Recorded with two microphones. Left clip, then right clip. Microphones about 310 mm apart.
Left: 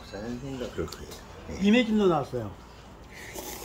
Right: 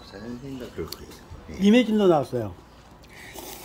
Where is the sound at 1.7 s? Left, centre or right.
Right.